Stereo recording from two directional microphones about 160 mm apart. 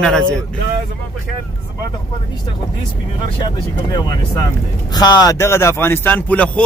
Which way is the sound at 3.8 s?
25° left (ahead or behind).